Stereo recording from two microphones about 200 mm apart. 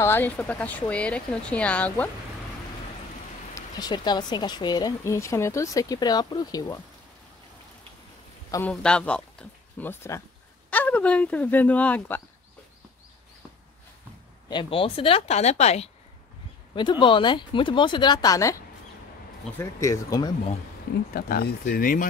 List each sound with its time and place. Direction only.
0.0 s speech: 10° left (ahead or behind)
3.5 s speech: 20° left (ahead or behind)
8.5 s a man's voice: 15° left (ahead or behind)
14.5 s speech: 25° left (ahead or behind)
19.6 s speech: 15° left (ahead or behind)
21.1 s speech: 45° left (ahead or behind)